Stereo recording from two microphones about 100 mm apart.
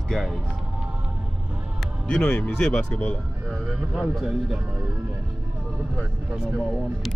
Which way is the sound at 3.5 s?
15° right (ahead or behind).